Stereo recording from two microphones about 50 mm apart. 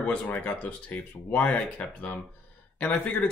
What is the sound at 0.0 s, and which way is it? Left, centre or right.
Speech, left.